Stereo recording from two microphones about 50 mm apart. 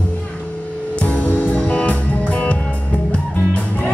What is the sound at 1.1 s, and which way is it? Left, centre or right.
Music, left.